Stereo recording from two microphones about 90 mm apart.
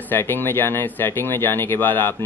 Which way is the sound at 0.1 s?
25° left (ahead or behind).